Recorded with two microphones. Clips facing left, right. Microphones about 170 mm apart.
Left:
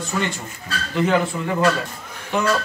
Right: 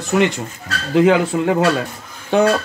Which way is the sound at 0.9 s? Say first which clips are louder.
Right 6 dB; 90° right.